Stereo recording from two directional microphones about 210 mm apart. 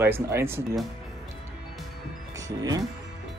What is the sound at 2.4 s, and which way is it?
Speech, 15° right (ahead or behind).